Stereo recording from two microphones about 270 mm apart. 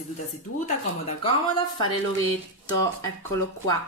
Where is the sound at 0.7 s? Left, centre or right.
Left.